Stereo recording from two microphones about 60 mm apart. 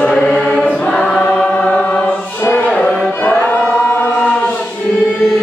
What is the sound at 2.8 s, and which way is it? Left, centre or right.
Music, centre.